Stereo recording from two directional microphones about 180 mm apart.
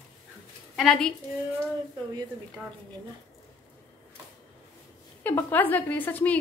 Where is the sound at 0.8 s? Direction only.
Centre (ahead or behind).